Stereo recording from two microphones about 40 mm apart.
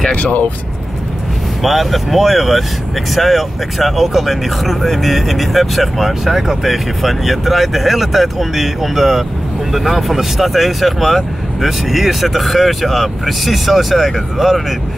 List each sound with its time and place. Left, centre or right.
0.1 s speech: left
1.6 s speech: centre